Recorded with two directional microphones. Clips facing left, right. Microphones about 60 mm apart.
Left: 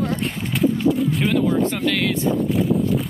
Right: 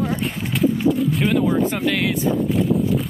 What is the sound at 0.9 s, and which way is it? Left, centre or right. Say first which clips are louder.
Speech: right 1 dB; centre.